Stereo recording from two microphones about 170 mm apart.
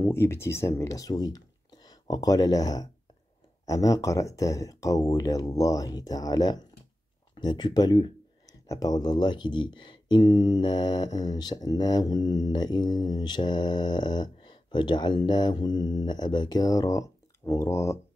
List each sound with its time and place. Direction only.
0.0 s speech: 15° left (ahead or behind)